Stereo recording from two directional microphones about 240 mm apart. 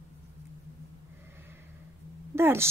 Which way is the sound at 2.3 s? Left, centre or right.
Centre.